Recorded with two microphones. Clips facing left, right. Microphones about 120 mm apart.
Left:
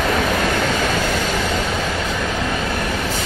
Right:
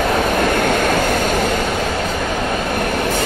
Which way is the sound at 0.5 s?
55° right (ahead or behind).